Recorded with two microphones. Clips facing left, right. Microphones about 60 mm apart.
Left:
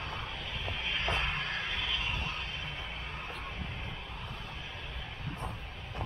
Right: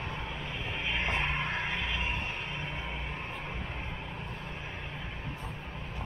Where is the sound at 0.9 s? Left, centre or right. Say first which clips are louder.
Right 2 dB; right.